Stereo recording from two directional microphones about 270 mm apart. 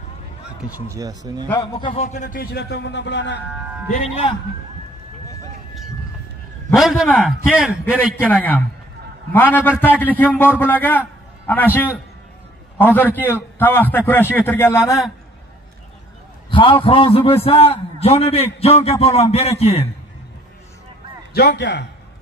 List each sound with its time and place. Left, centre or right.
0.7 s speech: centre
1.5 s a man's voice: centre; by 3.3 s left
3.9 s a man's voice: centre
6.7 s a man's voice: centre
16.4 s a man's voice: centre
21.3 s a man's voice: left